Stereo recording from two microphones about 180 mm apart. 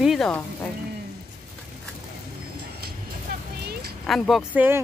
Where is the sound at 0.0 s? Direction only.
Centre (ahead or behind).